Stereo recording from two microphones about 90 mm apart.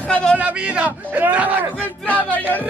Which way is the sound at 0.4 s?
15° right (ahead or behind).